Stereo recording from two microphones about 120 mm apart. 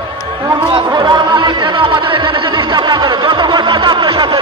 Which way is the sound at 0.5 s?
40° right (ahead or behind).